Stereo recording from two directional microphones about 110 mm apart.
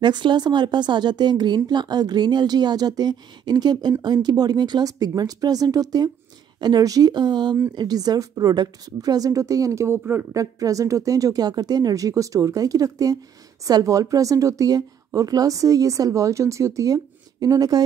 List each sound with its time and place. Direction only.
0.0 s a woman's voice: 45° right (ahead or behind)